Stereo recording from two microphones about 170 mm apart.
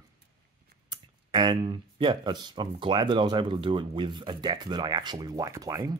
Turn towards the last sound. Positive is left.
turn(degrees=-20)  # may be behind; listen again after turning